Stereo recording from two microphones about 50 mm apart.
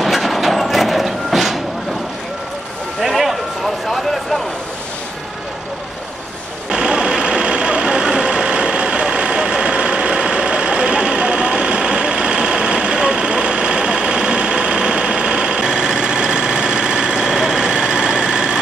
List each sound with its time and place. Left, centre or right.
0.0 s vehicle: centre
3.0 s a sound: centre
6.7 s vehicle: centre